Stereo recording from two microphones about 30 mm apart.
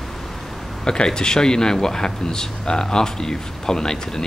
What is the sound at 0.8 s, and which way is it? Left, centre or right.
Speech, left.